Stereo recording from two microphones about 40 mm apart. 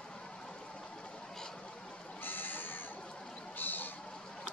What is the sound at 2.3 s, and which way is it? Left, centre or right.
Sheep, left.